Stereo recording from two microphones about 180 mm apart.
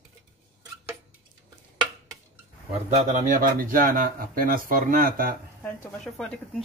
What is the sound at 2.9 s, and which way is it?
Speech, 45° right (ahead or behind).